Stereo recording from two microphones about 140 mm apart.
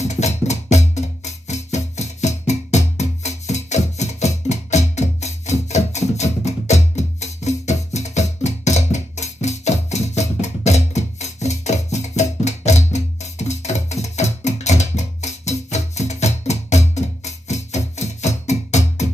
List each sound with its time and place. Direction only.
0.0 s music: 55° left (ahead or behind)